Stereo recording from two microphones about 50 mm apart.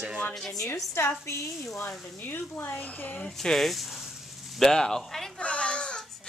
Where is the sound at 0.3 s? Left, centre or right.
Centre.